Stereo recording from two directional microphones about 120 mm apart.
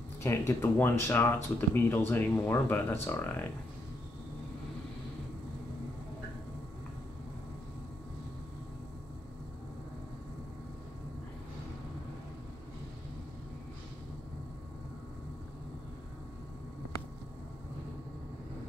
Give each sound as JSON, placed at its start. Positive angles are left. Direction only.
{"t": 0.2, "sound": "speech", "side_deg": 20}